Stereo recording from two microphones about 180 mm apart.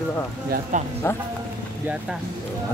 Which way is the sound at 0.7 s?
45° right (ahead or behind).